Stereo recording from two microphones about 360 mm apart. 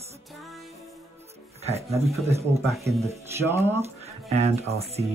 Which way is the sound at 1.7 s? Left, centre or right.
Centre.